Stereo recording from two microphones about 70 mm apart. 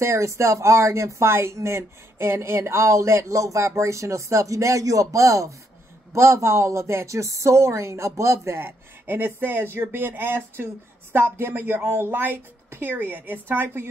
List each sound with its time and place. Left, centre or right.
0.0 s speech: right